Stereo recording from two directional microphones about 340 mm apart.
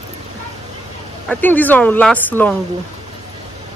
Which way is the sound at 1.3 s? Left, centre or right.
Centre.